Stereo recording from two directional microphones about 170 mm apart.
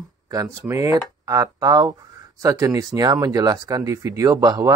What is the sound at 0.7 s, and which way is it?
Speech, 20° right (ahead or behind).